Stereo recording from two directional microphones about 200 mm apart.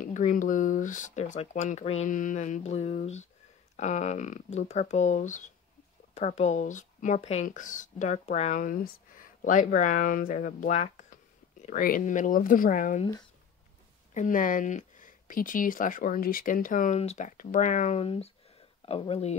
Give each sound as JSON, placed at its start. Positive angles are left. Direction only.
{"t": 0.0, "sound": "speech", "side_deg": 40}
{"t": 14.1, "sound": "speech", "side_deg": 40}